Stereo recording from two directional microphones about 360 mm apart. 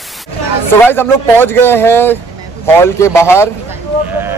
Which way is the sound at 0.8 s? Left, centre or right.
Centre.